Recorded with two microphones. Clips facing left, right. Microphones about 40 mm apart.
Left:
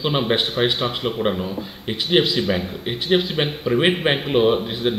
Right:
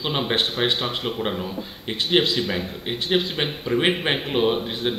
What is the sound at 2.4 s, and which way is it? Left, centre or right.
Speech, centre.